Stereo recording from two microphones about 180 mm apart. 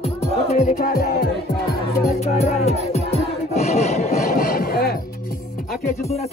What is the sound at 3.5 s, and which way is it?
Sawing, 35° left (ahead or behind).